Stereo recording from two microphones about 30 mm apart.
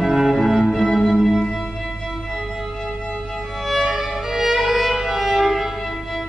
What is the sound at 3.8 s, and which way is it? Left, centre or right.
Violin, centre.